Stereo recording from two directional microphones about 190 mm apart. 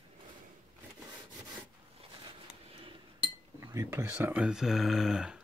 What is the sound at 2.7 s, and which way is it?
Chink, 30° right (ahead or behind).